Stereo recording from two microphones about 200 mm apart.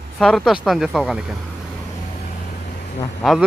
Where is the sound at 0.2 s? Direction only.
Centre (ahead or behind).